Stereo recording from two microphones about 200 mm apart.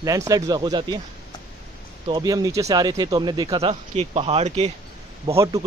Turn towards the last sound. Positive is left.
turn(degrees=-20)  # may be behind; listen again after turning